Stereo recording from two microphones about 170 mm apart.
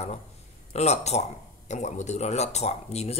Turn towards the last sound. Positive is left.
turn(degrees=40)  # may be behind; listen again after turning